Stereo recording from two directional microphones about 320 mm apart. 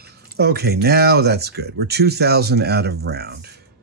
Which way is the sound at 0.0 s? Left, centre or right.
Right.